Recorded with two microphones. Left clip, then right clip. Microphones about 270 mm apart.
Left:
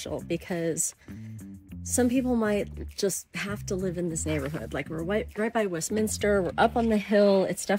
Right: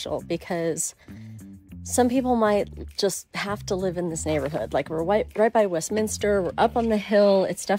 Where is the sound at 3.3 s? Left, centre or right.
Centre.